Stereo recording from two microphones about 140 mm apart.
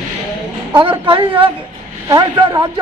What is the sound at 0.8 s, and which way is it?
A man's voice, 40° right (ahead or behind).